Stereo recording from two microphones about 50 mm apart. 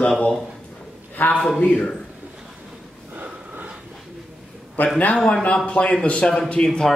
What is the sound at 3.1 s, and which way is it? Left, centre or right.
Snort, right.